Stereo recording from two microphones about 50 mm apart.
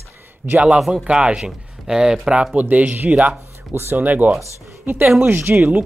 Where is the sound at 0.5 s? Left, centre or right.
Right.